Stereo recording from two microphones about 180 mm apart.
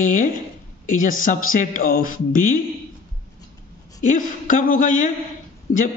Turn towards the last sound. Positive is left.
turn(degrees=45)  # may be behind; listen again after turning